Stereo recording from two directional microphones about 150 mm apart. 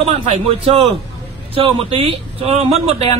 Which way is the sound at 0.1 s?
40° right (ahead or behind).